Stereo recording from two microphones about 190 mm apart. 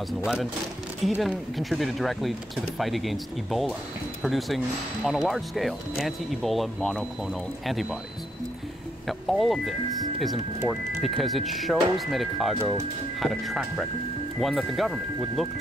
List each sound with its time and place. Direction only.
1.0 s speech: 5° right (ahead or behind)
9.0 s speech: centre (ahead or behind)